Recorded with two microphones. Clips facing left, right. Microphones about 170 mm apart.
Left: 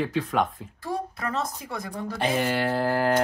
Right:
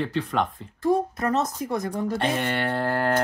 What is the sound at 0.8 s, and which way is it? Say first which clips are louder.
A woman's voice: right 8 dB; 45° right (ahead or behind).